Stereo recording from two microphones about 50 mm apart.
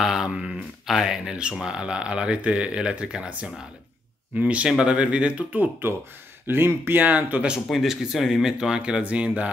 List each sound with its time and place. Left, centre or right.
0.0 s speech: centre
4.4 s speech: right
4.6 s speech: centre
5.5 s speech: right
6.4 s speech: right
7.0 s speech: right
7.7 s speech: centre; by 9.5 s right